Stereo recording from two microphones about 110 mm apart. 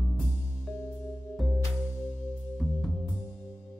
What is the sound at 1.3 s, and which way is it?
Music, centre (ahead or behind).